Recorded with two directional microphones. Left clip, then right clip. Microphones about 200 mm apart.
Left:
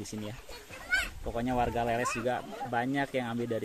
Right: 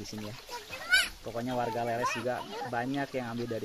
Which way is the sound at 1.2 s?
30° left (ahead or behind).